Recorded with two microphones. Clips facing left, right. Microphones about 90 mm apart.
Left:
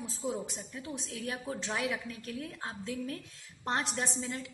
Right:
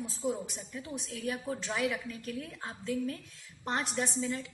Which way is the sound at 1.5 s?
25° left (ahead or behind).